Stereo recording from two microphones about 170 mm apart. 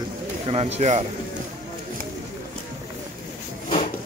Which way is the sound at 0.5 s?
40° right (ahead or behind).